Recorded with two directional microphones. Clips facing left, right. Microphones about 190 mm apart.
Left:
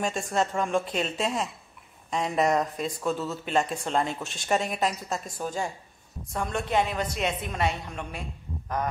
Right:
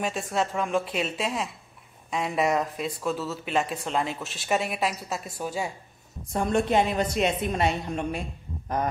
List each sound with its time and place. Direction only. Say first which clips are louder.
0.0 s speech: even; 5° right (ahead or behind)
6.3 s a woman's voice: right 4 dB; 25° right (ahead or behind)